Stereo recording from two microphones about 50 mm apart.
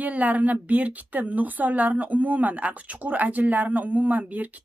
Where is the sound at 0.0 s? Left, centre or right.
Right.